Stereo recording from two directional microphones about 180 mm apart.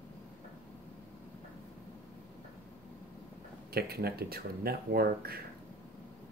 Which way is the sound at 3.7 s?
60° right (ahead or behind).